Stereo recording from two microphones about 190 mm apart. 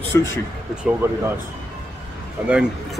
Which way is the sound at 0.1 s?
15° left (ahead or behind).